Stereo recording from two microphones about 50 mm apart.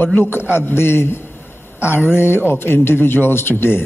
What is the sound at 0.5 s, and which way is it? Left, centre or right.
A man's voice, left.